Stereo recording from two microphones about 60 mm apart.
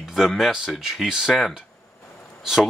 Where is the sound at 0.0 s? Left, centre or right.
Centre.